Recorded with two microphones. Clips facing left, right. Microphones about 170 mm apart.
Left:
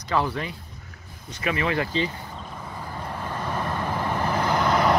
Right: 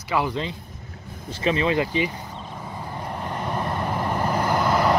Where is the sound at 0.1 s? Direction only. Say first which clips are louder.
Right 1 dB; 15° right (ahead or behind).